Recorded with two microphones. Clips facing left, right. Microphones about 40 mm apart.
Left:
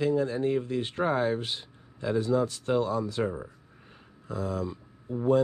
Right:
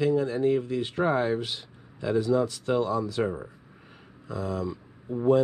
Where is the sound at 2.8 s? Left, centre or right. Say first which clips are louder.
Right 2 dB; right.